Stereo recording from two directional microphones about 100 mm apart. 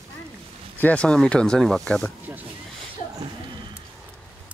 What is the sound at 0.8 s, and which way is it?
Speech, 15° left (ahead or behind).